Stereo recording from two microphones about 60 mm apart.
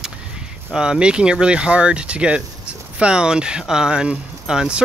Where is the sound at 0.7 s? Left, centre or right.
Centre.